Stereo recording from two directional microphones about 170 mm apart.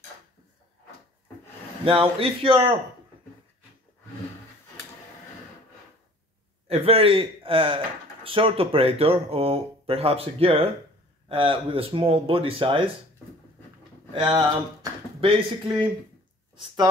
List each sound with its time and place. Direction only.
1.9 s speech: 35° right (ahead or behind)
6.7 s speech: 35° right (ahead or behind)
14.1 s speech: 30° right (ahead or behind)